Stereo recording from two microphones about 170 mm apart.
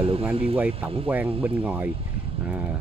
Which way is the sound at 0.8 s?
35° right (ahead or behind).